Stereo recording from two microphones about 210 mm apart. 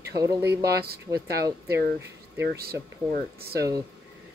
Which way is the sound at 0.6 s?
50° right (ahead or behind).